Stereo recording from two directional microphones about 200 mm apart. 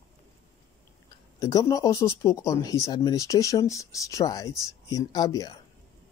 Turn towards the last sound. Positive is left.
turn(degrees=20)  # may be behind; listen again after turning